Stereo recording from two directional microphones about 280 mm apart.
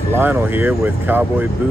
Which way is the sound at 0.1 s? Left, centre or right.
Centre.